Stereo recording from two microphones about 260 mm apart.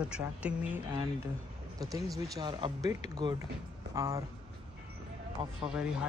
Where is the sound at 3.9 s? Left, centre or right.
Centre.